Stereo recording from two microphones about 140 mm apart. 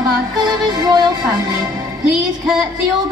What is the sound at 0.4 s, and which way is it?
Music, 30° right (ahead or behind).